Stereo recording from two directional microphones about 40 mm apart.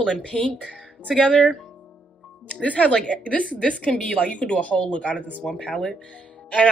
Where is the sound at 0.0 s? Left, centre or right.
Left.